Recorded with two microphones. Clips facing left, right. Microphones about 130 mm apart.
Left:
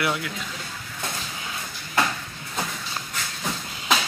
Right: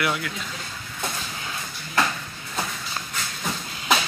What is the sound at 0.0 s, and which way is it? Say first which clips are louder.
Speech: even; 25° left (ahead or behind).